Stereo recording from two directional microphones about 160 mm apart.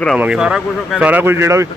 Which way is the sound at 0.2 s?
5° right (ahead or behind).